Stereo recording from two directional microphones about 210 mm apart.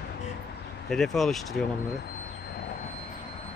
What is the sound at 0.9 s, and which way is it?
Speech, centre (ahead or behind).